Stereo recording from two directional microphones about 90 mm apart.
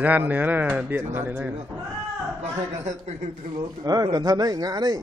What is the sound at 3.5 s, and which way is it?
Speech, 45° right (ahead or behind).